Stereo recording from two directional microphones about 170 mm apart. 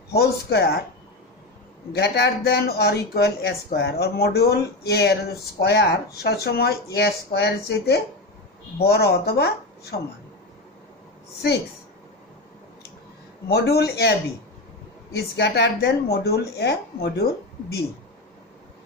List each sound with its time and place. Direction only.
0.1 s a man's voice: 70° left (ahead or behind)
1.9 s a man's voice: 75° left (ahead or behind)
13.5 s a man's voice: 70° left (ahead or behind)
15.1 s a man's voice: 75° left (ahead or behind)